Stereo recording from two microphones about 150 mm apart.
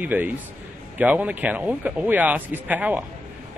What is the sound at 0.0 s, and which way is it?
Speech, 10° right (ahead or behind).